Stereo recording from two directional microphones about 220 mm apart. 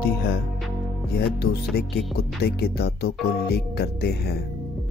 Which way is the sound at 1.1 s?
45° left (ahead or behind).